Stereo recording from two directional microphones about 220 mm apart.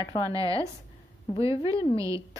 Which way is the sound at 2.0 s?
15° right (ahead or behind).